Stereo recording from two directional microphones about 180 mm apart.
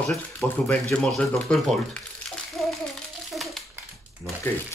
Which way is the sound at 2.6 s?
Centre (ahead or behind).